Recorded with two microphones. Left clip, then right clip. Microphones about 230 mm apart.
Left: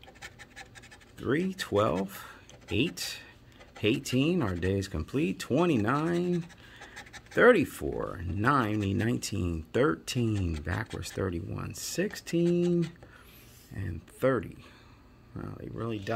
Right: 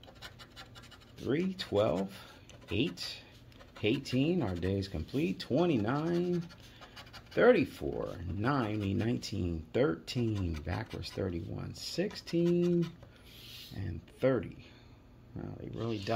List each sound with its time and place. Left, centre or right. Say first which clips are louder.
1.2 s speech: left 4 dB; left
7.3 s speech: left 4 dB; left